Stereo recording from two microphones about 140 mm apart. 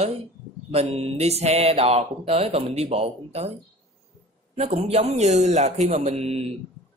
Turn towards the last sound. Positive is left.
turn(degrees=-45)  # may be behind; listen again after turning